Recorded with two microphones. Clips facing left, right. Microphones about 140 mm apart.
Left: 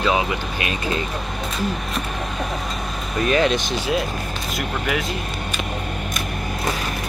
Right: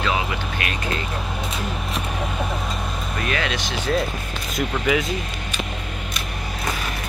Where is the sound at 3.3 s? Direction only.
30° left (ahead or behind).